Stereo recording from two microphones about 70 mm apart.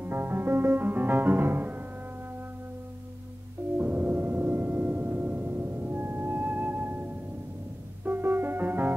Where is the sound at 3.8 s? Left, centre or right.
Right.